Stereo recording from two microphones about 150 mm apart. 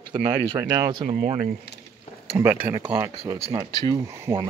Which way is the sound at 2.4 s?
15° right (ahead or behind).